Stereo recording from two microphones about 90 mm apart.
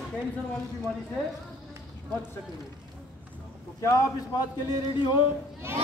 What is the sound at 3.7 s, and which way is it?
Speech, 35° left (ahead or behind).